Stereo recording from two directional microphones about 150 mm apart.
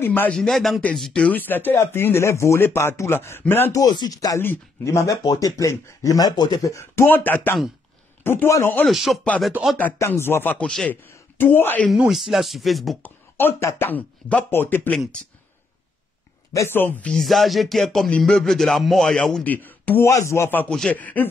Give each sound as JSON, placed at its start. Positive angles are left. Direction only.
{"t": 0.0, "sound": "speech", "side_deg": 15}
{"t": 3.8, "sound": "speech", "side_deg": 25}
{"t": 8.8, "sound": "speech", "side_deg": 0}
{"t": 9.8, "sound": "speech", "side_deg": 15}
{"t": 11.9, "sound": "speech", "side_deg": 0}
{"t": 13.0, "sound": "speech", "side_deg": 15}
{"t": 16.5, "sound": "speech", "side_deg": 15}